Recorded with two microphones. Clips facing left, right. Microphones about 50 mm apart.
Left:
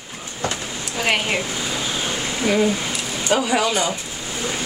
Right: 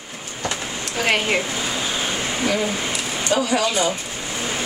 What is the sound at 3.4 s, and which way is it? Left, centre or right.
Speech, centre.